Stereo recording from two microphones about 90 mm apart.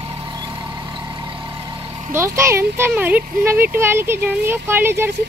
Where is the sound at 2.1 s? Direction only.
30° right (ahead or behind).